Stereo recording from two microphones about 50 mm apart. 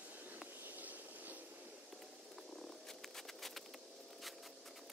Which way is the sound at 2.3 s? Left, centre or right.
Centre.